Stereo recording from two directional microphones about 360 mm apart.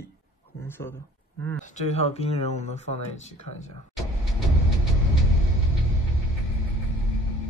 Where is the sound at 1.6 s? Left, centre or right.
Centre.